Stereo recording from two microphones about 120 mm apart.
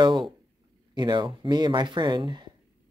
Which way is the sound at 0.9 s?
40° right (ahead or behind).